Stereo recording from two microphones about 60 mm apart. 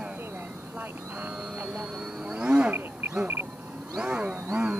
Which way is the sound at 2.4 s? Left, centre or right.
Right.